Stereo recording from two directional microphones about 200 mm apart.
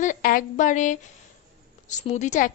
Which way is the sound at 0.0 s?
40° left (ahead or behind).